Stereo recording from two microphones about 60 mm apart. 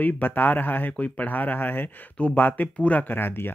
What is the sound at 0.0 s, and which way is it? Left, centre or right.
Speech, left.